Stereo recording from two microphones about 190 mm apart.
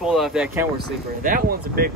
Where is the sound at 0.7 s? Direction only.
50° right (ahead or behind).